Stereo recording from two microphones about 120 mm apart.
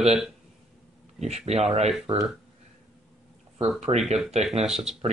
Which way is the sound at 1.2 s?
65° right (ahead or behind).